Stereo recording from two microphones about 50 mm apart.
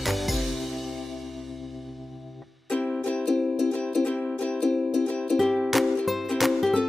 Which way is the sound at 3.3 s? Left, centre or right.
Centre.